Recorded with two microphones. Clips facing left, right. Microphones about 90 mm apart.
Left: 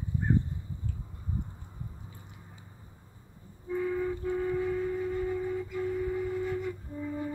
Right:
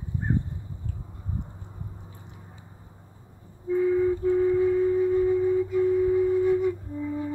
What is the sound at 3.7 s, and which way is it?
Flute, 10° right (ahead or behind).